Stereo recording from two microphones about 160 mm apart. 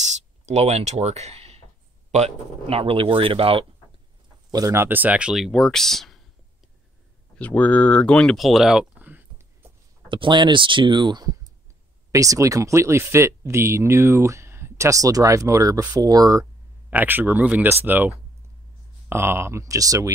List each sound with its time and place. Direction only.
0.0 s a sound: 45° right (ahead or behind)
2.0 s speech: 40° right (ahead or behind)
4.5 s speech: 20° right (ahead or behind); by 6.2 s centre (ahead or behind)
7.3 s speech: 10° left (ahead or behind); by 9.7 s 10° right (ahead or behind)
10.0 s speech: 30° right (ahead or behind)
16.9 s speech: 10° right (ahead or behind)